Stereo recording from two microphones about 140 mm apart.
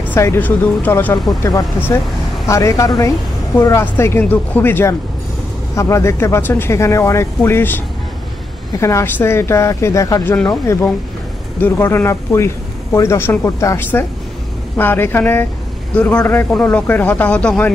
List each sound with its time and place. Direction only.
0.1 s speech: 15° left (ahead or behind)
1.4 s speech: 25° left (ahead or behind)
10.3 s speech: 5° left (ahead or behind)
11.6 s speech: 15° left (ahead or behind)